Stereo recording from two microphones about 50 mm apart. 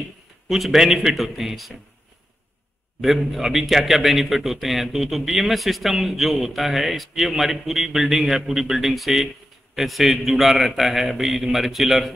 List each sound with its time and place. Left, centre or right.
0.5 s a man's voice: centre
3.0 s a man's voice: centre